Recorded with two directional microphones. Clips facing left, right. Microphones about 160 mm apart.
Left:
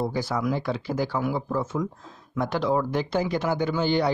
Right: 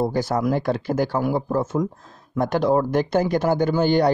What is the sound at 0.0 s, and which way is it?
Speech, 45° right (ahead or behind).